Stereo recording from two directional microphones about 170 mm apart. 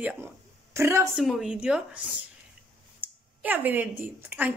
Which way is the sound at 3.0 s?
10° right (ahead or behind).